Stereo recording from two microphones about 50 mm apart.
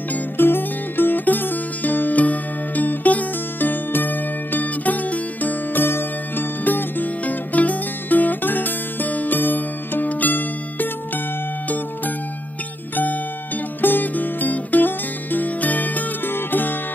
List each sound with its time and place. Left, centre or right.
0.1 s music: left
12.9 s music: left